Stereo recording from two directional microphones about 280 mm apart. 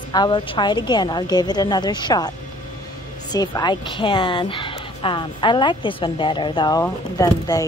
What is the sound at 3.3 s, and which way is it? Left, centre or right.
A woman's voice, centre.